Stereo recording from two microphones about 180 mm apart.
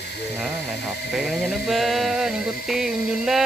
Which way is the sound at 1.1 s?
Centre (ahead or behind).